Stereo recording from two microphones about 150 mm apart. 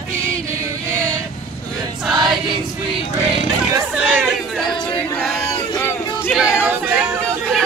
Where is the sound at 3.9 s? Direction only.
10° right (ahead or behind).